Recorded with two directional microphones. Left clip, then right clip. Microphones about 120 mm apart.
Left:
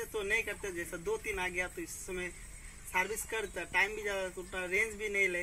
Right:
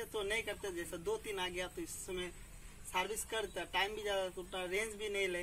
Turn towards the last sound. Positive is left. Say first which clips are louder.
# left 6 dB
turn(degrees=-20)  # may be behind; listen again after turning